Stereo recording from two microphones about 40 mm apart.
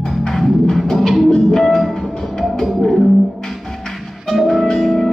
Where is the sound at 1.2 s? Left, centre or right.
Centre.